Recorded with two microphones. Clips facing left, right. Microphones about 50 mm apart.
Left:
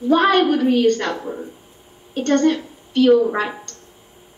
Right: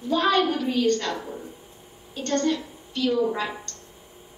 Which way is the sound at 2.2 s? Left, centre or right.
Left.